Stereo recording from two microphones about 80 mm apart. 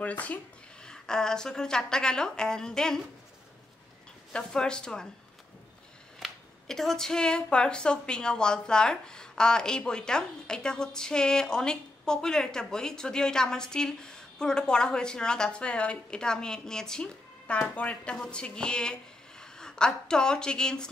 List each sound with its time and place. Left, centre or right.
0.0 s speech: centre
4.3 s speech: centre
6.1 s speech: centre